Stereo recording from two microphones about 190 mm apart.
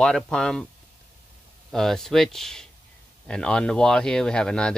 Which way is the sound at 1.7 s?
Centre (ahead or behind).